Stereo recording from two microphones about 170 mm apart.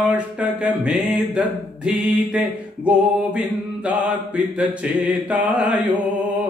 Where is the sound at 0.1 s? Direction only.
5° right (ahead or behind).